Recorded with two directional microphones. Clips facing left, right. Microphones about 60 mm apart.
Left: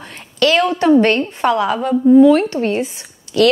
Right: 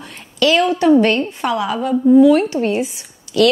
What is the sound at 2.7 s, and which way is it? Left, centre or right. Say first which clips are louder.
Speech: even; left.